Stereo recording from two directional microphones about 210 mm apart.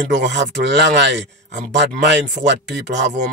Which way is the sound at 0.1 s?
55° right (ahead or behind).